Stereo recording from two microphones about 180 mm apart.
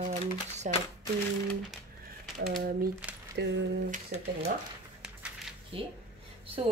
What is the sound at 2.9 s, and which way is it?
Speech, 10° right (ahead or behind).